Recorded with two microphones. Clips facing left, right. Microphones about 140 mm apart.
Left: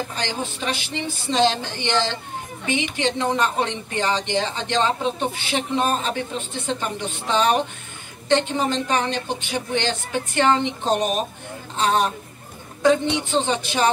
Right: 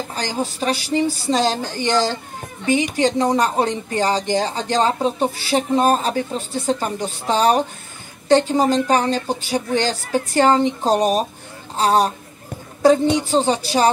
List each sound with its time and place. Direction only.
0.1 s speech: 40° right (ahead or behind)